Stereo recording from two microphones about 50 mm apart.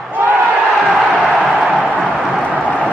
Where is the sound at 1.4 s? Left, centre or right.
Right.